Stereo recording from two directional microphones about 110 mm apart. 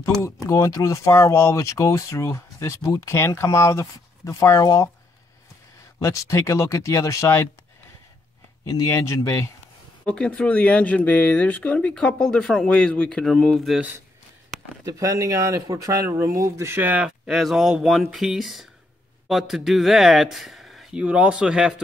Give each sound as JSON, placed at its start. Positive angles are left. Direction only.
{"t": 0.0, "sound": "speech", "side_deg": 30}
{"t": 5.9, "sound": "speech", "side_deg": 30}
{"t": 8.6, "sound": "speech", "side_deg": 30}
{"t": 10.0, "sound": "speech", "side_deg": 10}
{"t": 13.7, "sound": "speech", "side_deg": -10}
{"t": 14.9, "sound": "speech", "side_deg": -30}
{"t": 17.3, "sound": "speech", "side_deg": 0}